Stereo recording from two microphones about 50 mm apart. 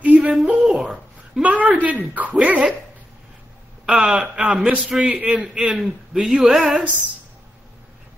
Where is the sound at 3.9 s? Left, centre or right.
Centre.